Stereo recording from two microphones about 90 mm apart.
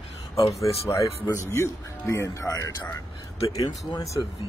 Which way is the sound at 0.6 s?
35° left (ahead or behind).